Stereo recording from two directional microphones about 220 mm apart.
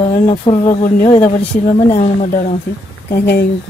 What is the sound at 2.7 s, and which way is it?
Speech, 45° left (ahead or behind).